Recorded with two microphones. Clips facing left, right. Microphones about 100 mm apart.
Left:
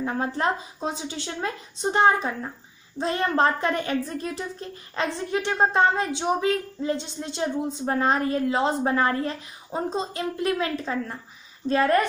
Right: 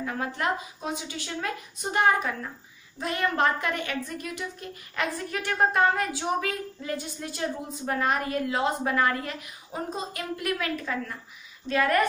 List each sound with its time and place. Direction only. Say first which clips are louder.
0.0 s a woman's voice: left 4 dB; 30° left (ahead or behind)